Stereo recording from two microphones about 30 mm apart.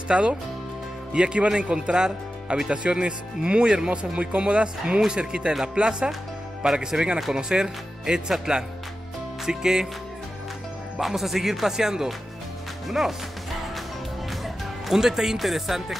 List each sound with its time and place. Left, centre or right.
0.1 s speech: right
2.0 s speech: right
2.8 s speech: right
5.0 s speech: right
11.0 s speech: centre
12.8 s speech: centre
15.0 s speech: centre
15.3 s speech: centre